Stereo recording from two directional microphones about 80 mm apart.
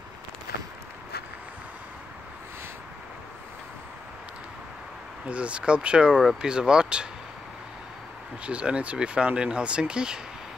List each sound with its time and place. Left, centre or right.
5.2 s speech: centre
8.5 s speech: centre